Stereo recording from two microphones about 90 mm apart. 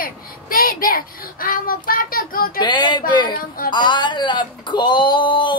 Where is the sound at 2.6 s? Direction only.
60° left (ahead or behind).